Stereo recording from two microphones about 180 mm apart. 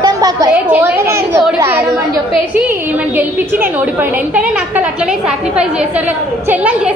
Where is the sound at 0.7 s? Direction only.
10° right (ahead or behind).